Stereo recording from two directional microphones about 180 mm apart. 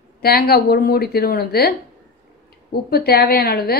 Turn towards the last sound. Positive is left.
turn(degrees=60)  # may be behind; listen again after turning